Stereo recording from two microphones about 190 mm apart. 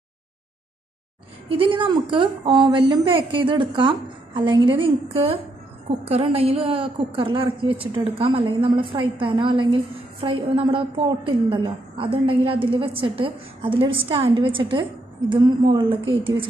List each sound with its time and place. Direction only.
1.5 s a woman's voice: 25° right (ahead or behind)